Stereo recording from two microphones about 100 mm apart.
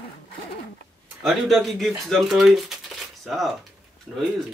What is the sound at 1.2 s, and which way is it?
A man's voice, centre (ahead or behind).